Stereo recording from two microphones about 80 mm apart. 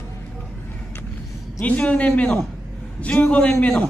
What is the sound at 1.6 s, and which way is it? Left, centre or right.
A man's voice, centre.